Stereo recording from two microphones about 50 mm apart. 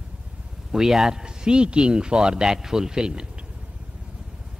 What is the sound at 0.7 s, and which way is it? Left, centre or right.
A man's voice, centre.